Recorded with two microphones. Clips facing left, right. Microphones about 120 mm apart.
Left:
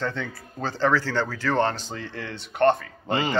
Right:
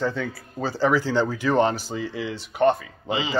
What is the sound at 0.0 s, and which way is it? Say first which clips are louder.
Speech: right 3 dB; 10° right (ahead or behind).